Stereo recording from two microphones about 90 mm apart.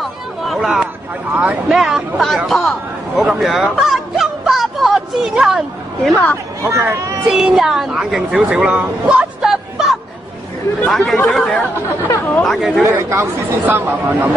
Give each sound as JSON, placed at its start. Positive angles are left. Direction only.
{"t": 0.5, "sound": "a sound", "side_deg": 0}
{"t": 1.3, "sound": "speech", "side_deg": -15}
{"t": 1.7, "sound": "speech", "side_deg": -5}
{"t": 3.2, "sound": "a sound", "side_deg": -5}
{"t": 6.6, "sound": "speech", "side_deg": -35}
{"t": 7.2, "sound": "speech", "side_deg": -5}
{"t": 12.8, "sound": "speech", "side_deg": -30}